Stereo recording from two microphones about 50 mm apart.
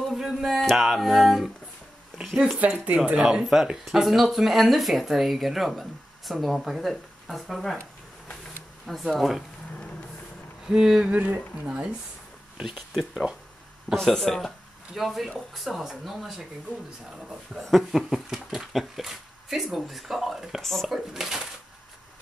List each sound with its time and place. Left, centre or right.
0.1 s speech: centre
8.8 s speech: centre
10.7 s speech: centre
11.1 s speech: right
11.6 s speech: centre
12.7 s speech: centre
17.6 s speech: centre